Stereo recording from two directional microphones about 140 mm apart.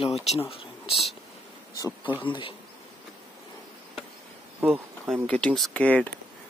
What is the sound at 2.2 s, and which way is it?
Speech, 35° left (ahead or behind).